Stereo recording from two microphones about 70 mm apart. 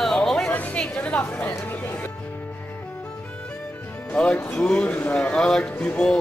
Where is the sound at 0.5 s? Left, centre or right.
Left.